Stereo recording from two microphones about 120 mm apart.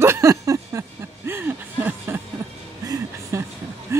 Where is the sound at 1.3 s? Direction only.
20° right (ahead or behind).